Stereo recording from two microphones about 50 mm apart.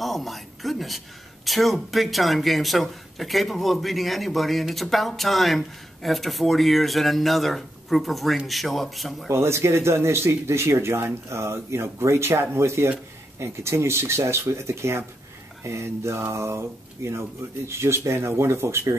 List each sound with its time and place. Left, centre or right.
0.0 s speech: centre
9.3 s speech: right